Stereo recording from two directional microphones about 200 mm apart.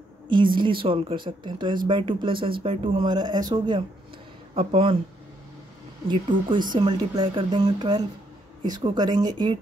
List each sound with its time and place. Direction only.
0.6 s speech: 25° right (ahead or behind)
6.0 s speech: 25° right (ahead or behind)